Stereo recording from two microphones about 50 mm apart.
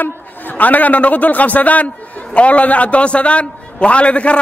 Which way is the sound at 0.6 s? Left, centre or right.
Left.